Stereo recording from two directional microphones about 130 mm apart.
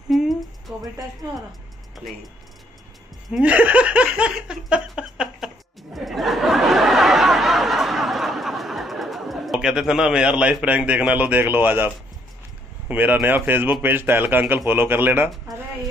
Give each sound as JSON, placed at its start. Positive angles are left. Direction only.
{"t": 0.1, "sound": "humming", "side_deg": 0}
{"t": 3.3, "sound": "speech", "side_deg": -10}
{"t": 5.9, "sound": "a sound", "side_deg": 0}
{"t": 12.8, "sound": "speech", "side_deg": -15}